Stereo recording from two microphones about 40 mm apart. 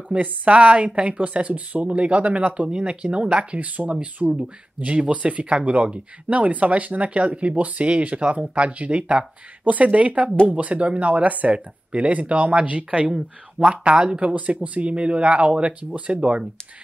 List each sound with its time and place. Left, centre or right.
0.1 s speech: right
14.2 s speech: right